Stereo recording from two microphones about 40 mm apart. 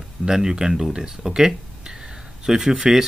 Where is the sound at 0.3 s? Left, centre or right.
Centre.